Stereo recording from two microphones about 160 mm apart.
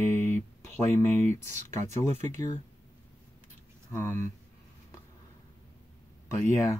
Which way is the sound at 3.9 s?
15° left (ahead or behind).